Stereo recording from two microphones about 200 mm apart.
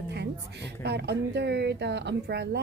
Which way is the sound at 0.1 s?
55° right (ahead or behind).